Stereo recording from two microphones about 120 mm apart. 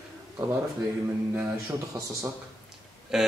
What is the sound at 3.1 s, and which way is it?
Speech, 5° right (ahead or behind).